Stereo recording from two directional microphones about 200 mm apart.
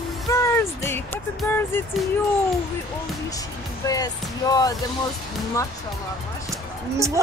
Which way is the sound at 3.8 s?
20° left (ahead or behind).